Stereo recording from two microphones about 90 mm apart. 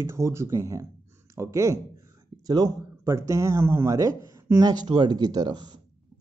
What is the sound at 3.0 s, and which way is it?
Speech, 35° right (ahead or behind).